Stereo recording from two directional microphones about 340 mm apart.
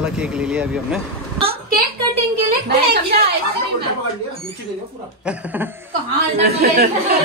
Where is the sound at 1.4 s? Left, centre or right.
Centre.